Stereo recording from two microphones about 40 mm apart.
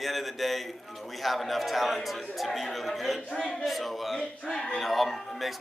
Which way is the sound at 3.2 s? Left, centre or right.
Centre.